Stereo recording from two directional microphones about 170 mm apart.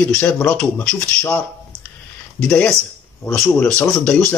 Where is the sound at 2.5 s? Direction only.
5° left (ahead or behind).